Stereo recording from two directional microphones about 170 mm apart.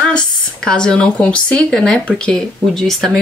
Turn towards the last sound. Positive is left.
turn(degrees=0)  # may be behind; listen again after turning